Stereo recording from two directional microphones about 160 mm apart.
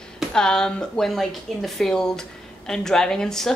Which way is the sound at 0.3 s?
5° left (ahead or behind).